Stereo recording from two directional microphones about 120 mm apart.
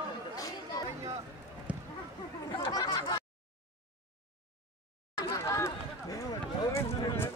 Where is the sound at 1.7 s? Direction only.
10° right (ahead or behind).